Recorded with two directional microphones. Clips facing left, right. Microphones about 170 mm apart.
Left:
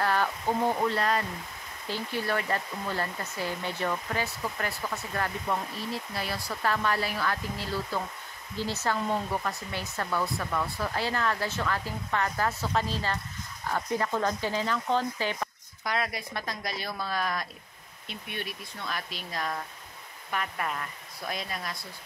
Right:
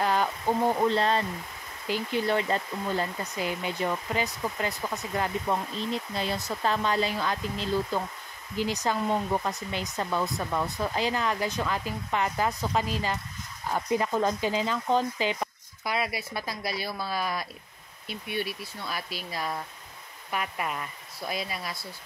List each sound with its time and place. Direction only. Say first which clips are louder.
0.0 s speech: right 1 dB; 15° right (ahead or behind)